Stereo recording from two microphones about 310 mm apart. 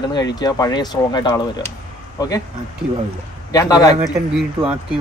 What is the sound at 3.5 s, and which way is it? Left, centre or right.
Speech, centre.